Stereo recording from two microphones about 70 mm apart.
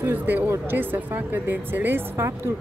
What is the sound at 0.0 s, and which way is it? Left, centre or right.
A woman's voice, right.